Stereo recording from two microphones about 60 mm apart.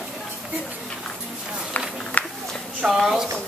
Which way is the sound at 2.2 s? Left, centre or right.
Left.